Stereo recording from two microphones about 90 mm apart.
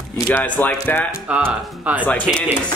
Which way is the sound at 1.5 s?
15° right (ahead or behind).